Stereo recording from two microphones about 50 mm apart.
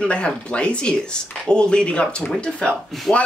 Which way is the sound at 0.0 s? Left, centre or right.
Left.